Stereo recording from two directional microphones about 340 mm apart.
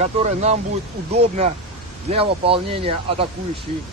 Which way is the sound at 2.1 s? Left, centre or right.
Centre.